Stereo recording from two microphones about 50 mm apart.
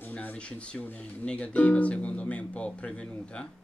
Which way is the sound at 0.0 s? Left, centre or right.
Left.